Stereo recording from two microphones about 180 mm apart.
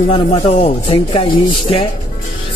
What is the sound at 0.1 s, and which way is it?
Speech, 30° left (ahead or behind).